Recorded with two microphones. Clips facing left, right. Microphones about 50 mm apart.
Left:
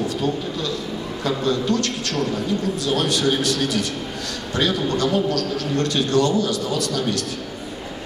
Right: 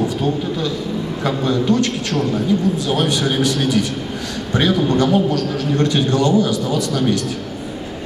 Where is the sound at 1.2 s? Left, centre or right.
Right.